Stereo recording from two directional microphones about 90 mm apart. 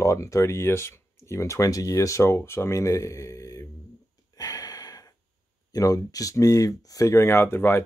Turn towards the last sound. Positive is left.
turn(degrees=25)  # may be behind; listen again after turning